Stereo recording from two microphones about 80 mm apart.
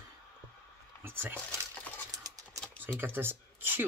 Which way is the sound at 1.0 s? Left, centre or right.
Right.